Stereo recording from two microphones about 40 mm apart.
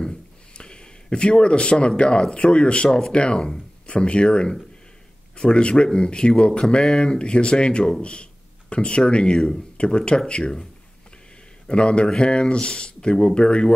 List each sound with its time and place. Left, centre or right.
0.6 s speech: left
11.6 s speech: left